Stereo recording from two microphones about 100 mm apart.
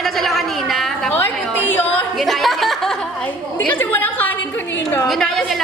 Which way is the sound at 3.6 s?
20° left (ahead or behind).